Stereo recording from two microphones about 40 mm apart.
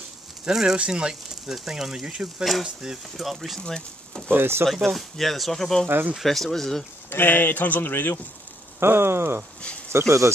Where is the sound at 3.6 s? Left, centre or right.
Centre.